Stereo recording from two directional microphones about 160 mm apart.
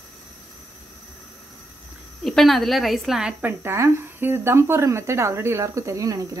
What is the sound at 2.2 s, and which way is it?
A woman's voice, centre (ahead or behind).